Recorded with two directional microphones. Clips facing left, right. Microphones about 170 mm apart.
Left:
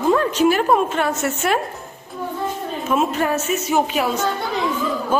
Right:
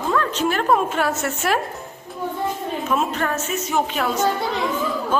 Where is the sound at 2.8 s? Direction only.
5° left (ahead or behind).